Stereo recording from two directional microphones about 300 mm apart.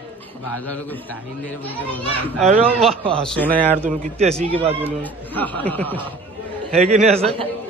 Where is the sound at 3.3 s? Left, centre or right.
Centre.